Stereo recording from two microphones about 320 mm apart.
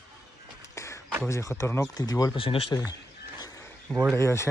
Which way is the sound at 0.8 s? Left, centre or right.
Centre.